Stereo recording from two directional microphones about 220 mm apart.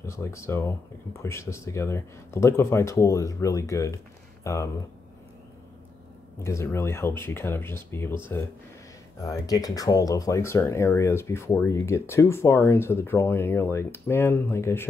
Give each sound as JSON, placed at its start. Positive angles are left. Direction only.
{"t": 0.0, "sound": "speech", "side_deg": 10}
{"t": 6.4, "sound": "speech", "side_deg": 10}